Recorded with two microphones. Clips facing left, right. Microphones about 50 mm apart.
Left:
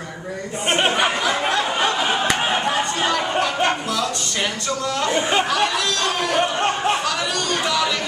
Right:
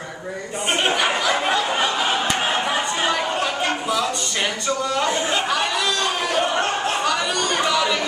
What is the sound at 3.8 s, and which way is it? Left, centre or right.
Speech, centre.